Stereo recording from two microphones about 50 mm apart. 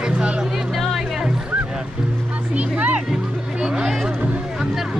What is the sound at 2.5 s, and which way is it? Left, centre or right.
Music, right.